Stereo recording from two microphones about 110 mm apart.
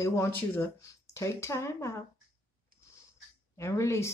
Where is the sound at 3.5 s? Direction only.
25° left (ahead or behind).